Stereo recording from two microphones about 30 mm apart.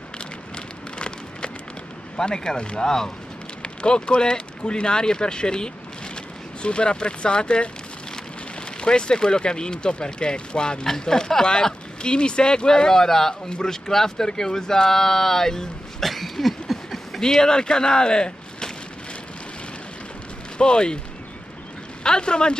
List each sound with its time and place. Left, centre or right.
0.9 s a sound: left
2.1 s speech: left
8.8 s speech: left; by 15.6 s centre
16.0 s a sound: centre
17.2 s speech: left
20.5 s speech: left
22.0 s speech: left